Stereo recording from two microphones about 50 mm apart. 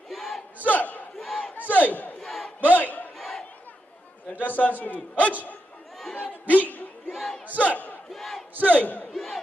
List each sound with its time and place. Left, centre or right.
0.1 s battle cry: centre
0.7 s battle cry: left
2.1 s battle cry: centre
2.6 s crowd: left
3.2 s crowd: centre
4.4 s a man's voice: left
6.4 s a sound: left
7.1 s battle cry: centre
7.5 s battle cry: left
8.1 s battle cry: centre
8.5 s battle cry: left
9.1 s a sound: centre